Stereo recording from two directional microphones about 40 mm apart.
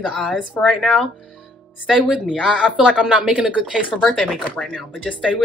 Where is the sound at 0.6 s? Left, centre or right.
Left.